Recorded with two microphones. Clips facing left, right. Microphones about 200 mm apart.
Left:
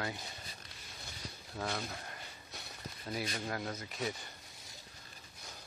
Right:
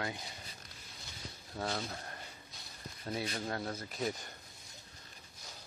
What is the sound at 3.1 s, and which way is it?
Speech, 30° right (ahead or behind).